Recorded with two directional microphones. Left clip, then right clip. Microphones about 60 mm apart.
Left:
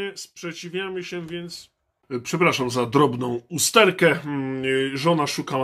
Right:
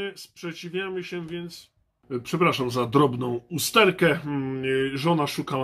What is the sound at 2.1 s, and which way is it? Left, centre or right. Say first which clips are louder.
Speech: left 2 dB; left.